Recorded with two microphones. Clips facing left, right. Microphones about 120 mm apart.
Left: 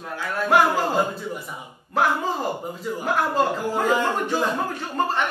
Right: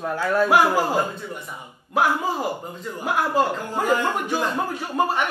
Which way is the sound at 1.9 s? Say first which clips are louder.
Right 1 dB; 10° right (ahead or behind).